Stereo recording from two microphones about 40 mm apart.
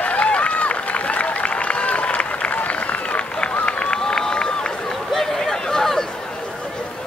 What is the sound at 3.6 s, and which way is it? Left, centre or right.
Run, left.